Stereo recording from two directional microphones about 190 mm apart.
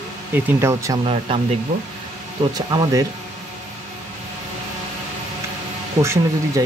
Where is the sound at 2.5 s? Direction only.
20° right (ahead or behind).